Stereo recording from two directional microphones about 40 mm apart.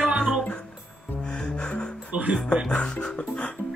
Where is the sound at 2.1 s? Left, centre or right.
Right.